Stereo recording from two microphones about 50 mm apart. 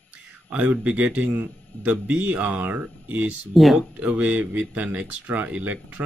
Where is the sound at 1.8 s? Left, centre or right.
Right.